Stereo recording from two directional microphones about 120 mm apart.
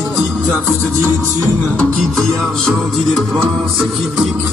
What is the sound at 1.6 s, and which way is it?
Music, 15° left (ahead or behind).